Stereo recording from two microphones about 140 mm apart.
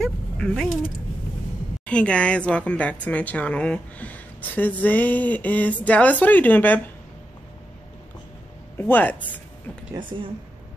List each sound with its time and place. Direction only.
0.0 s mechanisms: 5° left (ahead or behind)
1.9 s speech: 10° left (ahead or behind)
8.7 s speech: 15° left (ahead or behind)
10.0 s speech: 30° right (ahead or behind)